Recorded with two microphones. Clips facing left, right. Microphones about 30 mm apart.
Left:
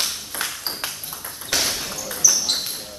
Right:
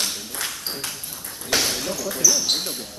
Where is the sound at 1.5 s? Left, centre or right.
Centre.